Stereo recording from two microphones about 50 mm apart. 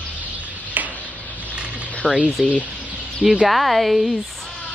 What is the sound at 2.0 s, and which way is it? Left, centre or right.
Speech, right.